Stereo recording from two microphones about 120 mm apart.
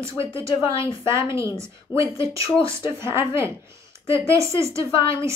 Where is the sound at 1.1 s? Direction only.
25° right (ahead or behind).